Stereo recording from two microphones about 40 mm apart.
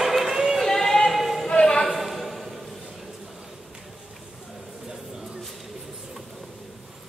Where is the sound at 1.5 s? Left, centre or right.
Left.